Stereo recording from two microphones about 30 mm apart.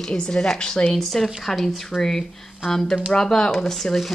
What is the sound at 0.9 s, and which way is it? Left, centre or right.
Speech, centre.